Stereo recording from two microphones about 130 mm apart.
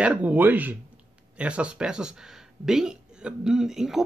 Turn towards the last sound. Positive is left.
turn(degrees=-5)  # may be behind; listen again after turning